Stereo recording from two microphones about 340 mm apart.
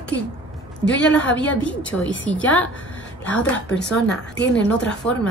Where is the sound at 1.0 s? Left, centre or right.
Centre.